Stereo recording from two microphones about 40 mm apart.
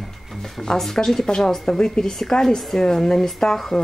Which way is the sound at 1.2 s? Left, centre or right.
Centre.